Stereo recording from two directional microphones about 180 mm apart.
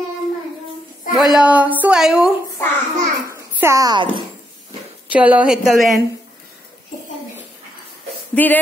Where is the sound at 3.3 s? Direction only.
15° right (ahead or behind).